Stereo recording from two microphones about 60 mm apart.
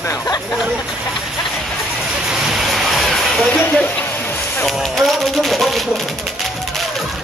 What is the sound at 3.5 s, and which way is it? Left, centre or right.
Speech, left.